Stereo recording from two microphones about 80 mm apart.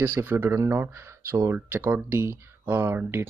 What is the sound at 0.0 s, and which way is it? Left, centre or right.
Speech, right.